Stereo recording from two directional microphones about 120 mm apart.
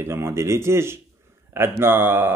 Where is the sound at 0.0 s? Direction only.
20° right (ahead or behind).